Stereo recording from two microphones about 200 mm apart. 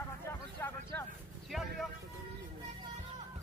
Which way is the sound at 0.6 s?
10° left (ahead or behind).